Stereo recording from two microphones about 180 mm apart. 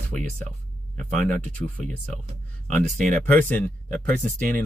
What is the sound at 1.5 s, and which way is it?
Speech, 5° left (ahead or behind).